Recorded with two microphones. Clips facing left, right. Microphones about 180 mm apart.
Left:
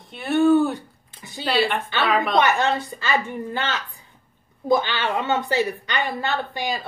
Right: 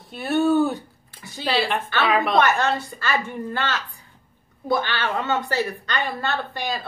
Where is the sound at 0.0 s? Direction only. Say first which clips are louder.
Left 2 dB; centre (ahead or behind).